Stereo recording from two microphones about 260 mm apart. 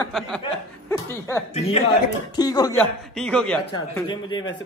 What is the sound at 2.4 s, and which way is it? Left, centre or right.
A man's voice, centre.